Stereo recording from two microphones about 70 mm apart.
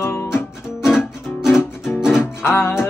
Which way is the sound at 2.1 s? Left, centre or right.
Left.